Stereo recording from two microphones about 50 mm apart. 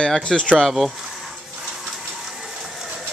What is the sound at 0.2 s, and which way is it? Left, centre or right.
Speech, centre.